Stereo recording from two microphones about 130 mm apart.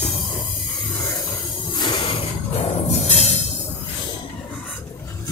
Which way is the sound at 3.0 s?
55° left (ahead or behind).